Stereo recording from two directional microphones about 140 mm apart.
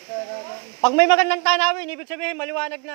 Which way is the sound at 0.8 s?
15° left (ahead or behind).